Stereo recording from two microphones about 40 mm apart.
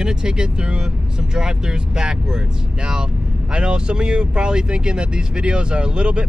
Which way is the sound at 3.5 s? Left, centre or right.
Right.